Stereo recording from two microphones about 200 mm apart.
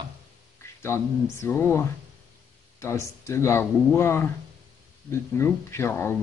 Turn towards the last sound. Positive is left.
turn(degrees=10)  # may be behind; listen again after turning